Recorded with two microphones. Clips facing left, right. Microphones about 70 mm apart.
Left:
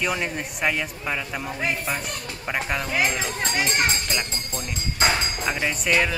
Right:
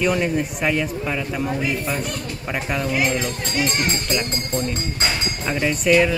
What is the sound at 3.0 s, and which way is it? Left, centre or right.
Speech, centre.